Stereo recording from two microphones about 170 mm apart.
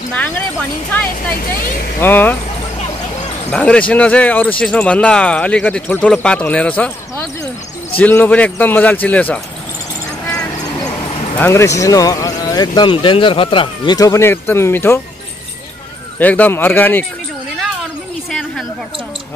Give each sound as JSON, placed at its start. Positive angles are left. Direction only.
{"t": 0.1, "sound": "speech", "side_deg": 10}
{"t": 1.0, "sound": "speech", "side_deg": 60}
{"t": 2.0, "sound": "speech", "side_deg": 10}
{"t": 3.5, "sound": "speech", "side_deg": 5}
{"t": 8.0, "sound": "speech", "side_deg": 10}
{"t": 10.2, "sound": "vehicle", "side_deg": 15}
{"t": 11.0, "sound": "a sound", "side_deg": 35}
{"t": 11.3, "sound": "speech", "side_deg": 15}
{"t": 16.2, "sound": "speech", "side_deg": 10}